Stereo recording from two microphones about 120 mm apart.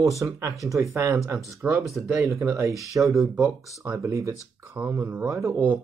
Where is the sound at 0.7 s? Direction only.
25° right (ahead or behind).